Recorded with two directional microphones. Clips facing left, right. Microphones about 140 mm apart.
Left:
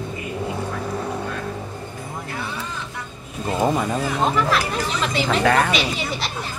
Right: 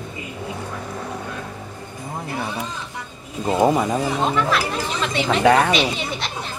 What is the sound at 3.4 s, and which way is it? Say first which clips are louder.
Speech: right 3 dB; 20° right (ahead or behind).